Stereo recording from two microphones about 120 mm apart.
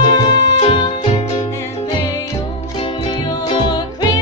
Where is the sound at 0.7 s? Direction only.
55° left (ahead or behind).